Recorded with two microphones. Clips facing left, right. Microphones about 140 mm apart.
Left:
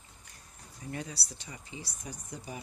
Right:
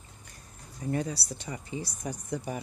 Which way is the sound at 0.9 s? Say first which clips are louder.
Right 8 dB; 45° right (ahead or behind).